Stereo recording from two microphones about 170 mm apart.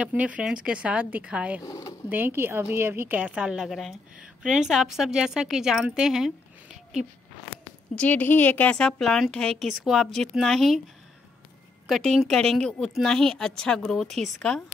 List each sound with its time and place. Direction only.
0.0 s a woman's voice: 10° right (ahead or behind)
1.6 s speech: 20° left (ahead or behind)
2.0 s a woman's voice: 10° right (ahead or behind)
7.9 s a woman's voice: 10° left (ahead or behind)
11.9 s a woman's voice: centre (ahead or behind)